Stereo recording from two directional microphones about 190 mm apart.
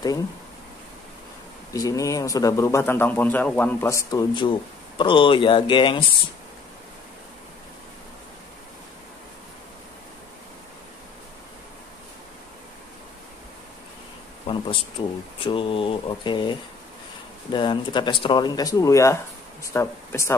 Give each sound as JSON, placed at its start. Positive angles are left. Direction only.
{"t": 1.7, "sound": "a man's voice", "side_deg": 15}
{"t": 14.5, "sound": "a man's voice", "side_deg": 25}